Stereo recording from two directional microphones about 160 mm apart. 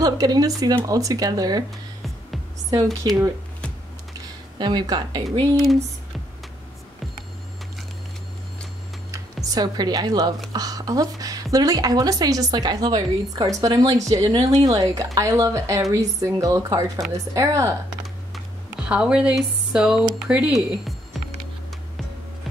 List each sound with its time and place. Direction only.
0.0 s a woman's voice: 25° right (ahead or behind)
2.7 s a woman's voice: 25° right (ahead or behind)
4.6 s a woman's voice: 25° right (ahead or behind)
5.4 s speech: centre (ahead or behind)
9.1 s a woman's voice: 25° right (ahead or behind)
18.3 s speech: 5° right (ahead or behind)